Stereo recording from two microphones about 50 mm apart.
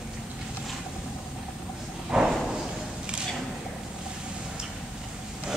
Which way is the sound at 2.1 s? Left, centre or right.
Centre.